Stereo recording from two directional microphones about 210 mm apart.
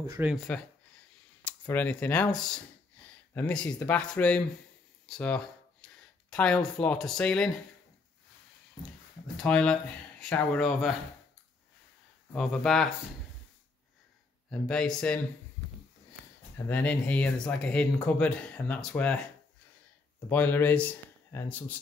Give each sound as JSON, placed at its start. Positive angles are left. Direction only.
{"t": 0.0, "sound": "speech", "side_deg": -15}
{"t": 0.3, "sound": "speech", "side_deg": 5}
{"t": 5.0, "sound": "a sound", "side_deg": 5}
{"t": 6.3, "sound": "speech", "side_deg": 5}
{"t": 9.4, "sound": "speech", "side_deg": 5}
{"t": 12.3, "sound": "speech", "side_deg": 0}
{"t": 14.5, "sound": "speech", "side_deg": 5}
{"t": 16.6, "sound": "speech", "side_deg": 5}
{"t": 20.2, "sound": "speech", "side_deg": 10}